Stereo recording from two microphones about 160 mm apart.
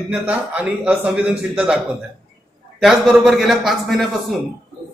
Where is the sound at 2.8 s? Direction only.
Centre (ahead or behind).